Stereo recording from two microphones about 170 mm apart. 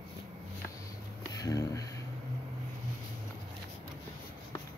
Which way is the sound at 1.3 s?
20° left (ahead or behind).